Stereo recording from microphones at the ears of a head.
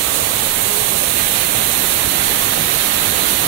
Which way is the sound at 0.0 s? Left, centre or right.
Right.